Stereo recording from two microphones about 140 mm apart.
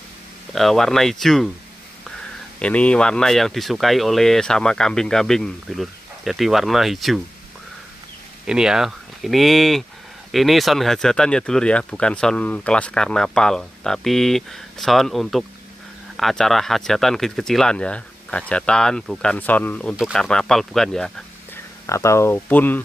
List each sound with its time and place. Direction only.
0.6 s speech: centre (ahead or behind)
2.6 s speech: 10° left (ahead or behind)
8.5 s speech: 5° right (ahead or behind)
21.8 s speech: 20° left (ahead or behind)